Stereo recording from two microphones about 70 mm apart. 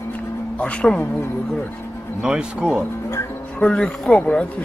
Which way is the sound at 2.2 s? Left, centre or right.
Centre.